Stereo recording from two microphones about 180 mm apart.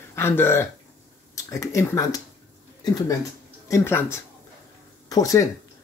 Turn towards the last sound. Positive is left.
turn(degrees=20)  # may be behind; listen again after turning